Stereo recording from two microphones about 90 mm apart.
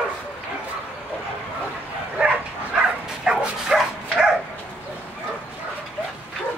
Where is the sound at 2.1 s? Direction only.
10° right (ahead or behind).